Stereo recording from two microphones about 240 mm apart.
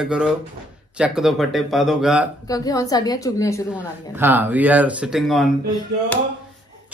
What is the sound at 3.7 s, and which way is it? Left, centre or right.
A man's voice, centre.